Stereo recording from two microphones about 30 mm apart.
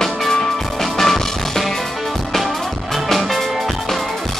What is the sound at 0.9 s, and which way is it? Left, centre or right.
Music, centre.